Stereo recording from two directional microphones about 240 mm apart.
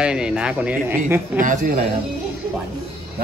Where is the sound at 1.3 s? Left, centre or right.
Right.